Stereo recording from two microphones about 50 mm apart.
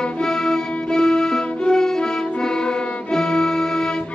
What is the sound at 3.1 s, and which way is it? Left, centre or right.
Music, centre.